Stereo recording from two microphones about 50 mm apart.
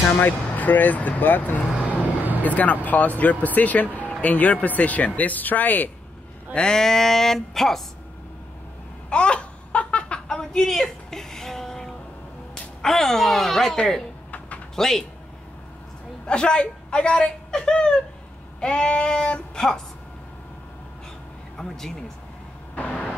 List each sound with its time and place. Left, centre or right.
0.2 s speech: left
6.5 s speech: centre
9.1 s a sound: left
12.8 s speech: centre
14.8 s speech: centre
16.3 s speech: centre
21.5 s speech: centre
22.8 s vehicle: left